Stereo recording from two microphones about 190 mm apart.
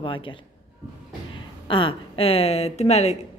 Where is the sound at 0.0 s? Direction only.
25° left (ahead or behind).